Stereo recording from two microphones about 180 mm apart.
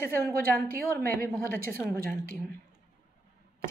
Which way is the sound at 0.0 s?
15° left (ahead or behind).